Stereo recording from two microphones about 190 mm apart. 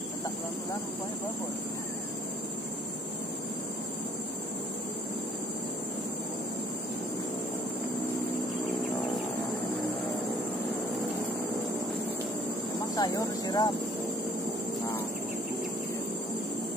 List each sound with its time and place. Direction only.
12.9 s vehicle: 20° left (ahead or behind)